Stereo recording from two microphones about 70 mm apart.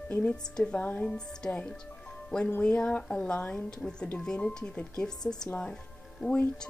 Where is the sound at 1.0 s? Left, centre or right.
Centre.